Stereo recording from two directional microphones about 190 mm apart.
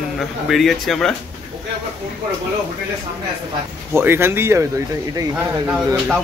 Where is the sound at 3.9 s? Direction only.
10° right (ahead or behind).